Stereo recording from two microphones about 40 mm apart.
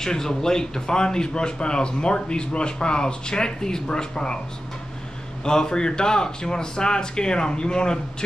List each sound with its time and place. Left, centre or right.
0.0 s speech: centre
5.4 s speech: centre